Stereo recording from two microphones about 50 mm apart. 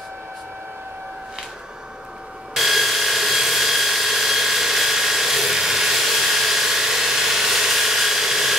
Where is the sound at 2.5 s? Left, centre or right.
Centre.